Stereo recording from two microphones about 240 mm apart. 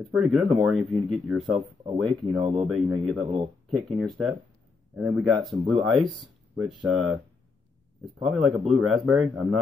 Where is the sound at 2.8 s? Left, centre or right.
Centre.